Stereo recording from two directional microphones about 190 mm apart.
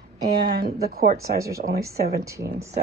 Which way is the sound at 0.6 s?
55° right (ahead or behind).